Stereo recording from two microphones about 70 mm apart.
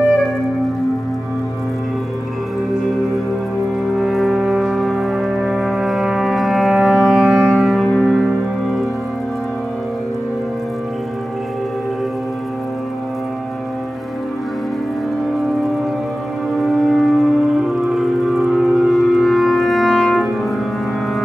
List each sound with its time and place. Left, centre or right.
4.0 s brass instrument: centre
8.0 s music: centre
16.5 s music: centre